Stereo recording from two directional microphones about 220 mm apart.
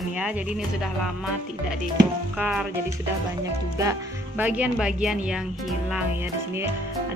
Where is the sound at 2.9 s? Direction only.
15° right (ahead or behind).